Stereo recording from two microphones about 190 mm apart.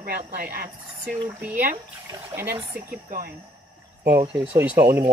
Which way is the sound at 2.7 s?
50° right (ahead or behind).